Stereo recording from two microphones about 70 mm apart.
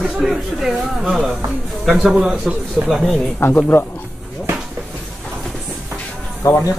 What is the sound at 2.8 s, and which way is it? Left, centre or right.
Speech, centre.